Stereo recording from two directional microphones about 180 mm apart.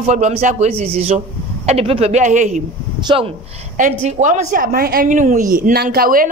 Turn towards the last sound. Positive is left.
turn(degrees=-55)  # may be behind; listen again after turning